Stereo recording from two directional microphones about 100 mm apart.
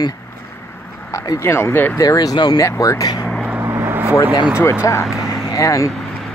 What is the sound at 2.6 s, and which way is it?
Speech, 30° left (ahead or behind).